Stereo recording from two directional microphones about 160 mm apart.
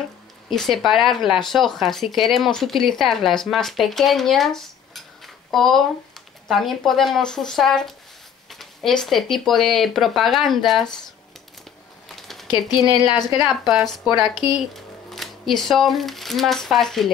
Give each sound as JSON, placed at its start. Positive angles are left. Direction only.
{"t": 0.5, "sound": "speech", "side_deg": 0}
{"t": 12.2, "sound": "a sound", "side_deg": 0}
{"t": 12.4, "sound": "speech", "side_deg": 25}
{"t": 13.5, "sound": "speech", "side_deg": 0}
{"t": 14.2, "sound": "speech", "side_deg": 30}
{"t": 15.0, "sound": "speech", "side_deg": 0}